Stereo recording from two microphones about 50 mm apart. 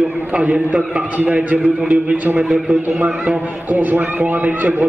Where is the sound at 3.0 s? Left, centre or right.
Right.